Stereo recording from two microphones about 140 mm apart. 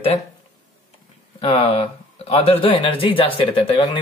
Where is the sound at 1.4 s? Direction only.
40° left (ahead or behind).